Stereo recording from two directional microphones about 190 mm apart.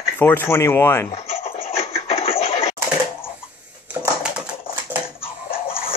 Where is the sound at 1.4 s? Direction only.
35° left (ahead or behind).